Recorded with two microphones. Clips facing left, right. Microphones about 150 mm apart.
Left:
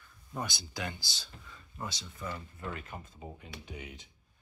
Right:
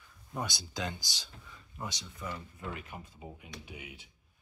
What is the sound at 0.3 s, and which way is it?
Speech, 15° right (ahead or behind).